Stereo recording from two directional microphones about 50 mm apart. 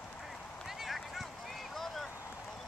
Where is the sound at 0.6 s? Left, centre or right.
Centre.